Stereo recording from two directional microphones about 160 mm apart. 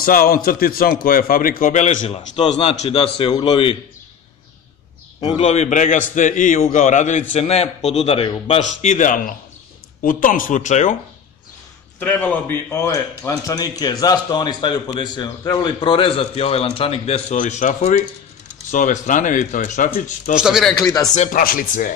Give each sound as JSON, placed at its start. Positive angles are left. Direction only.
{"t": 0.0, "sound": "a man's voice", "side_deg": 65}
{"t": 5.4, "sound": "a man's voice", "side_deg": 45}
{"t": 8.5, "sound": "a man's voice", "side_deg": 50}
{"t": 12.0, "sound": "a man's voice", "side_deg": 10}
{"t": 20.3, "sound": "speech", "side_deg": -5}
{"t": 20.7, "sound": "speech", "side_deg": 25}
{"t": 21.1, "sound": "a man's voice", "side_deg": 45}
{"t": 21.4, "sound": "a man's voice", "side_deg": 60}